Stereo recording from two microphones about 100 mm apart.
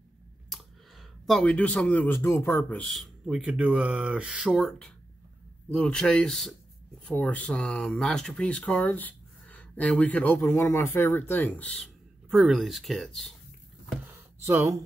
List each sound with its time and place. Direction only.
0.5 s clicking: centre (ahead or behind)
1.4 s speech: 15° left (ahead or behind)
2.7 s speech: 5° left (ahead or behind)
11.8 s speech: 5° right (ahead or behind)
14.4 s speech: 30° right (ahead or behind)